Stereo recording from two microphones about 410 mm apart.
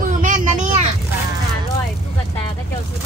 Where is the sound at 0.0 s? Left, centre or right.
Centre.